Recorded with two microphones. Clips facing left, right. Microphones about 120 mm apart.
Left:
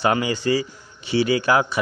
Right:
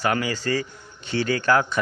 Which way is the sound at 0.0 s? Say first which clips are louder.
Left 3 dB; 20° left (ahead or behind).